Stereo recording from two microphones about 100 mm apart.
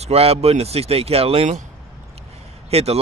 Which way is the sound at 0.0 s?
85° right.